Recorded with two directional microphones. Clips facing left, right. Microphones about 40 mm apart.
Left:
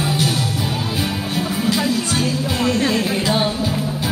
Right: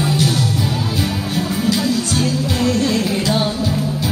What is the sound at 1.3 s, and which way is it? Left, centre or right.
Music, left.